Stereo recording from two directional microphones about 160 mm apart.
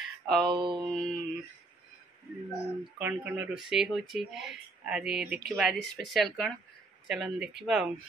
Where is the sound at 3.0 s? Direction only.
10° right (ahead or behind).